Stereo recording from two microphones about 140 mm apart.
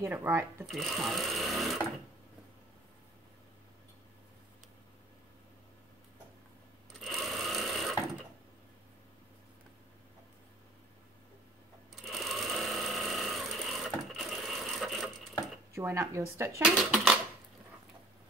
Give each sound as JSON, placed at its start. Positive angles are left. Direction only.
{"t": 0.0, "sound": "speech", "side_deg": -15}
{"t": 0.7, "sound": "speech", "side_deg": 0}
{"t": 7.0, "sound": "sewing machine", "side_deg": 0}
{"t": 11.9, "sound": "sewing machine", "side_deg": 0}
{"t": 15.7, "sound": "speech", "side_deg": -20}
{"t": 16.6, "sound": "speech", "side_deg": 0}